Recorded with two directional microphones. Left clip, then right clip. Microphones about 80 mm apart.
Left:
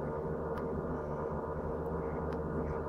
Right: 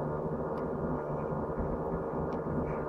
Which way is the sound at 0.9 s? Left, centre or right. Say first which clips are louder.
Right 3 dB; centre.